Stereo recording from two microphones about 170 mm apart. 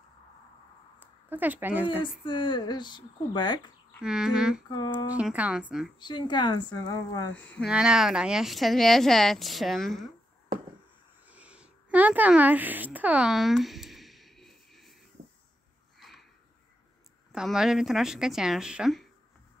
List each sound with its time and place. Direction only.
0.9 s a sound: 10° right (ahead or behind)
2.2 s speech: 30° left (ahead or behind)
4.0 s speech: 5° right (ahead or behind)
4.6 s speech: 25° left (ahead or behind)
5.1 s a woman's voice: 10° right (ahead or behind)
5.9 s speech: 25° left (ahead or behind)
7.3 s speech: 5° left (ahead or behind)
7.7 s speech: 5° right (ahead or behind)
11.2 s a sound: 10° right (ahead or behind)
16.0 s a sound: centre (ahead or behind)
17.3 s speech: 5° right (ahead or behind)